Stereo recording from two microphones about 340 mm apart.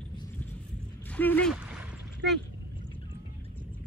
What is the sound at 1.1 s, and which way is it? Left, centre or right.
Speech, centre.